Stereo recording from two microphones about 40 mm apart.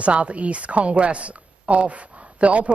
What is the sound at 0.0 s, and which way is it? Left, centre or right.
A woman's voice, right.